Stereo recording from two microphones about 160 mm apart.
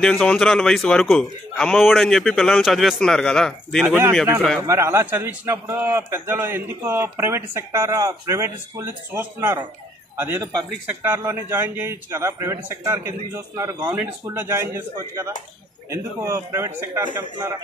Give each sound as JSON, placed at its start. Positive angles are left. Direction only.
{"t": 0.0, "sound": "a man's voice", "side_deg": 5}
{"t": 3.8, "sound": "a man's voice", "side_deg": -15}